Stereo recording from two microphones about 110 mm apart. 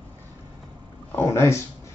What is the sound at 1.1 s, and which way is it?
Speech, 20° left (ahead or behind).